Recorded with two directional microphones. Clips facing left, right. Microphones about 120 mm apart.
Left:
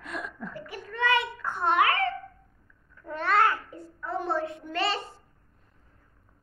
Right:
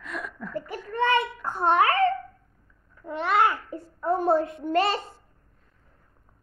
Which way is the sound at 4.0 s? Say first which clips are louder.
Right 7 dB; 45° right (ahead or behind).